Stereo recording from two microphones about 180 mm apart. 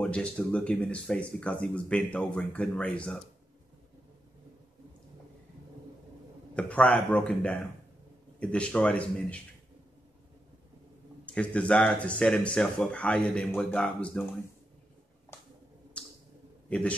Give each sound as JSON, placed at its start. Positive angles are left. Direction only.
{"t": 0.0, "sound": "speech", "side_deg": 5}
{"t": 6.5, "sound": "speech", "side_deg": 5}
{"t": 11.2, "sound": "speech", "side_deg": 5}
{"t": 16.6, "sound": "a man's voice", "side_deg": 5}